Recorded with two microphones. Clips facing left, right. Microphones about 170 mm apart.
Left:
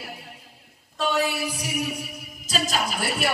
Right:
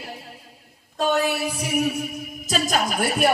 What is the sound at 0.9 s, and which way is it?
Speech, 50° right (ahead or behind).